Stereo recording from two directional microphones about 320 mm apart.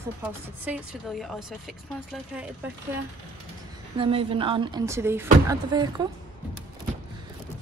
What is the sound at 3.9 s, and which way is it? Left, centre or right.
A woman's voice, centre.